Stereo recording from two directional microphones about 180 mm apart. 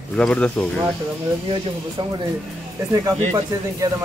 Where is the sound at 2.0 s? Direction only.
25° right (ahead or behind).